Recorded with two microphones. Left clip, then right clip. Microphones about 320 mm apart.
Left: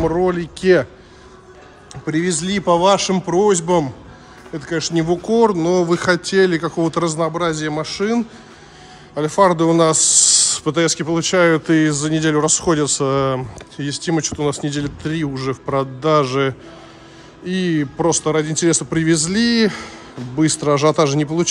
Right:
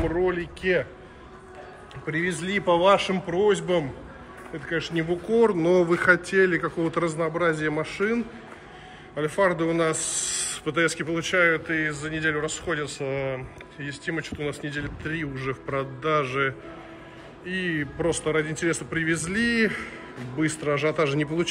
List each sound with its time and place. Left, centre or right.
0.6 s speech: left
2.2 s a man's voice: centre
13.0 s speech: left
13.7 s a man's voice: left